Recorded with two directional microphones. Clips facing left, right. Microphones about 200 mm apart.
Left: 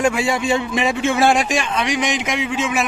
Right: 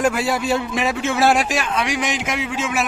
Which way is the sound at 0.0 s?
Centre (ahead or behind).